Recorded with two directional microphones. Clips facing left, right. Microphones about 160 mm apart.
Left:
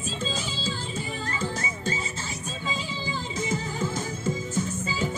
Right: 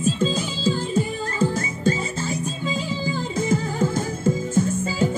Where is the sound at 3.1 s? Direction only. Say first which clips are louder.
Right 7 dB; 50° right (ahead or behind).